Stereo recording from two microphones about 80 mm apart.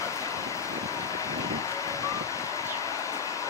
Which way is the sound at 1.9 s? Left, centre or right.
Left.